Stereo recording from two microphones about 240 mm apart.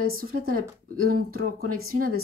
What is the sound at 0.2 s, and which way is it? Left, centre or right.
Speech, right.